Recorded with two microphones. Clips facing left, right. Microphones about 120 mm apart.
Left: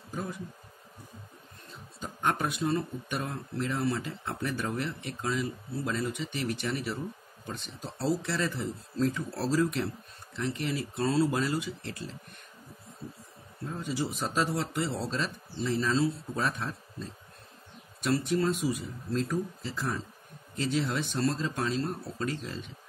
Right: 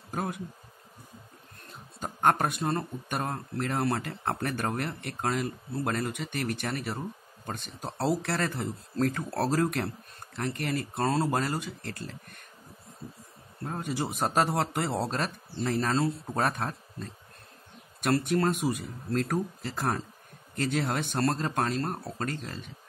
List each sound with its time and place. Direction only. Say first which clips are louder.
0.1 s speech: right 4 dB; 65° right (ahead or behind)
2.0 s speech: right 5 dB; 50° right (ahead or behind)
13.7 s speech: right 1 dB; 55° right (ahead or behind)
18.0 s speech: right 2 dB; 55° right (ahead or behind)